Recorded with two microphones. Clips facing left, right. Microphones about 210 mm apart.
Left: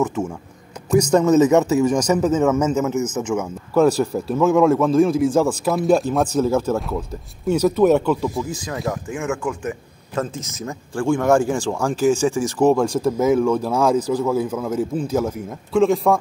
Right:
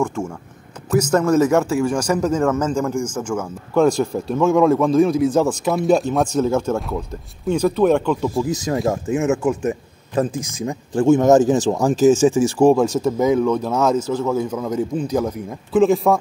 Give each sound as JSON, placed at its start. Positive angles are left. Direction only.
{"t": 0.0, "sound": "a man's voice", "side_deg": 5}
{"t": 0.9, "sound": "speech", "side_deg": -5}
{"t": 1.5, "sound": "a man's voice", "side_deg": 5}
{"t": 1.9, "sound": "speech", "side_deg": -10}
{"t": 2.1, "sound": "a man's voice", "side_deg": 5}
{"t": 8.6, "sound": "speech", "side_deg": -25}
{"t": 11.9, "sound": "speech", "side_deg": 10}
{"t": 12.2, "sound": "a man's voice", "side_deg": -15}